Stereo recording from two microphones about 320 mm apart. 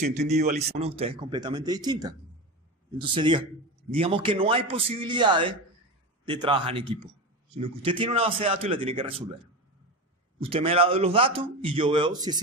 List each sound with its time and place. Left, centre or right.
0.0 s a man's voice: right
10.4 s a man's voice: centre